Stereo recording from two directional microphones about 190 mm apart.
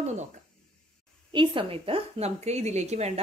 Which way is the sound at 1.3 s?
25° right (ahead or behind).